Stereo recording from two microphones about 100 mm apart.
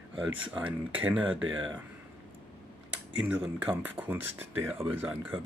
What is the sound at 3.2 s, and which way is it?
Speech, 15° right (ahead or behind).